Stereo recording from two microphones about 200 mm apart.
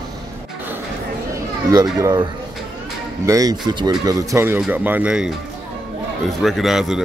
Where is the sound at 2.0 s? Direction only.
20° right (ahead or behind); by 5.3 s 5° right (ahead or behind).